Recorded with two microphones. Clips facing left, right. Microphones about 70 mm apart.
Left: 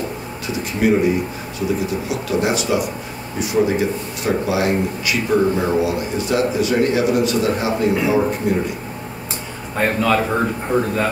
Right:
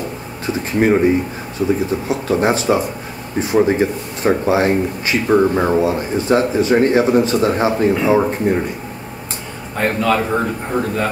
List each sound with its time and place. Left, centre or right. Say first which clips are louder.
0.5 s speech: right 3 dB; right
9.8 s a man's voice: right 1 dB; centre